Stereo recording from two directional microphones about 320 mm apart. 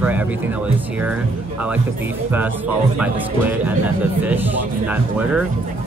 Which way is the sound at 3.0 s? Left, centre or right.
Centre.